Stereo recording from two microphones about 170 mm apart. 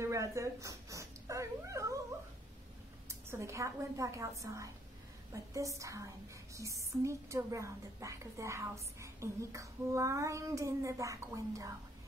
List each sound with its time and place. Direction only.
0.0 s speech: 15° right (ahead or behind)
3.1 s a woman's voice: 15° right (ahead or behind)